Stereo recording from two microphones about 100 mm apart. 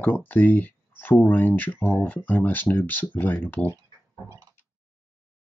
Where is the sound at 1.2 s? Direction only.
20° left (ahead or behind).